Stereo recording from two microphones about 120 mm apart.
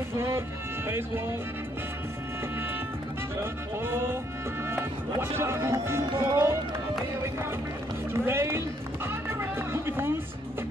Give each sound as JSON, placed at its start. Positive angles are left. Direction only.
{"t": 0.8, "sound": "speech", "side_deg": -20}
{"t": 3.8, "sound": "music", "side_deg": -20}
{"t": 5.2, "sound": "speech", "side_deg": -20}
{"t": 8.1, "sound": "run", "side_deg": -20}